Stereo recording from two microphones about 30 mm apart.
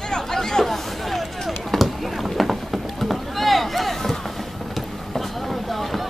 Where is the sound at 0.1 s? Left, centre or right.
Centre.